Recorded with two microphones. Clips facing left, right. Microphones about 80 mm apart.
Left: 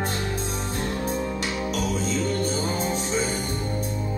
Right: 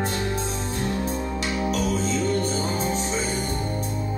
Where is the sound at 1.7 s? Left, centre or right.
Right.